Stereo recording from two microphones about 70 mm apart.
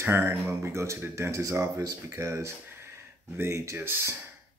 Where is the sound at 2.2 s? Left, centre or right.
Right.